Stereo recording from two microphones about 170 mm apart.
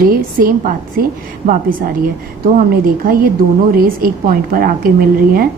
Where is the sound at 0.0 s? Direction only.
55° right (ahead or behind).